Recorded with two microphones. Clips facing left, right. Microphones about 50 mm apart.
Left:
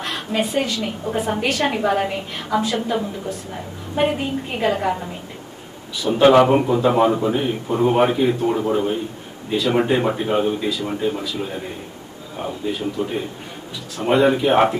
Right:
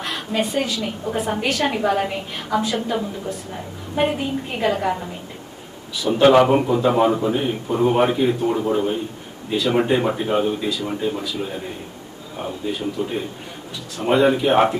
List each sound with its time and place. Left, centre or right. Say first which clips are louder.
0.0 s a woman's voice: left 1 dB; centre